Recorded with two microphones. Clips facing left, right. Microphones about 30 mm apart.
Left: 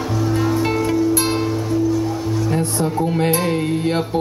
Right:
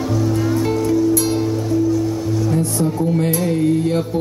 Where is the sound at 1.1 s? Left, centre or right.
Left.